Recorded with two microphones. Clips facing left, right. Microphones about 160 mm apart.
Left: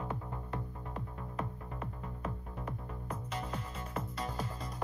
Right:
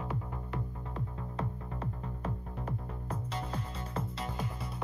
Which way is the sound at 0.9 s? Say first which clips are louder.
Right 2 dB; 30° right (ahead or behind).